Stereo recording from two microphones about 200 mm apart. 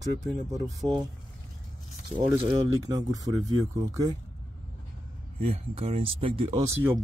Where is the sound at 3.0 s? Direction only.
20° right (ahead or behind).